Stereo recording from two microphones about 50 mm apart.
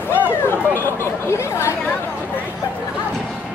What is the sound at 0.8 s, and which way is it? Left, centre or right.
Chatter, left.